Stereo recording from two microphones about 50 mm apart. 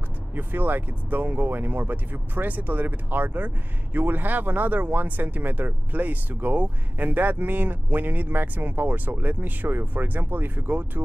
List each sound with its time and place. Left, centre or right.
0.3 s speech: right